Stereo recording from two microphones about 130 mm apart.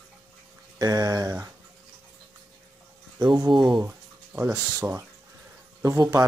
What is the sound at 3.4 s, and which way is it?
Speech, 35° right (ahead or behind).